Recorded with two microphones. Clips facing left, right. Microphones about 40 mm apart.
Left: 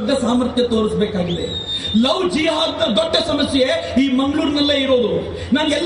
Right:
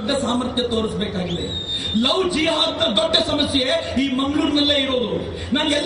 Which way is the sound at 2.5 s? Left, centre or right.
Right.